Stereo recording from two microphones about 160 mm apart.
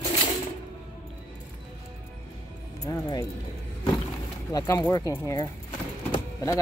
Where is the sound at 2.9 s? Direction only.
25° left (ahead or behind).